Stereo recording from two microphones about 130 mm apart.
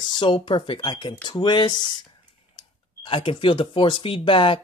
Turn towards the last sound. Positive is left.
turn(degrees=40)  # may be behind; listen again after turning